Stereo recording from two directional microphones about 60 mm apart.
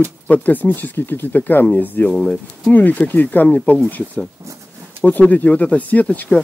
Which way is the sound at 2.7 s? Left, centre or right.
Left.